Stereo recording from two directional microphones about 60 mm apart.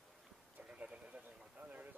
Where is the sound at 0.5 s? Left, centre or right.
Right.